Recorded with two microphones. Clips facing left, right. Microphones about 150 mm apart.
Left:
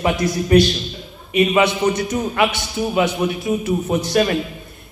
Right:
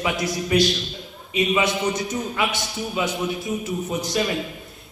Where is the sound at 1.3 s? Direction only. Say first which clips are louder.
Left 6 dB; 60° left (ahead or behind).